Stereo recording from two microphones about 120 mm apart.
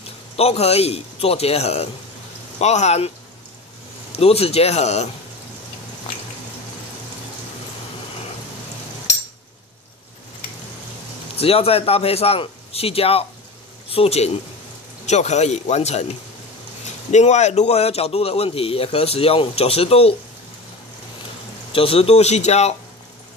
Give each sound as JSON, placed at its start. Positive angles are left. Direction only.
{"t": 0.0, "sound": "a man's voice", "side_deg": 55}
{"t": 2.6, "sound": "a man's voice", "side_deg": 70}
{"t": 4.1, "sound": "a man's voice", "side_deg": 55}
{"t": 11.3, "sound": "a man's voice", "side_deg": 55}
{"t": 15.0, "sound": "a man's voice", "side_deg": 70}
{"t": 21.7, "sound": "a man's voice", "side_deg": 50}